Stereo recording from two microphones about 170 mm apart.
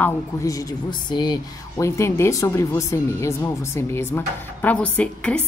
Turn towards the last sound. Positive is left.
turn(degrees=10)  # may be behind; listen again after turning